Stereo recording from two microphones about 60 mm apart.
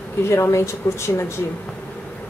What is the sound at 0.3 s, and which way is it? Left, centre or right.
Speech, left.